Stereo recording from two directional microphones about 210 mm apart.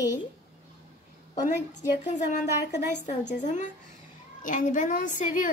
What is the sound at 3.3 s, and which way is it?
A woman's voice, 35° left (ahead or behind).